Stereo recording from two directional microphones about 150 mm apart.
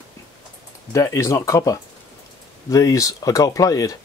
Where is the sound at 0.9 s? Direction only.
20° left (ahead or behind).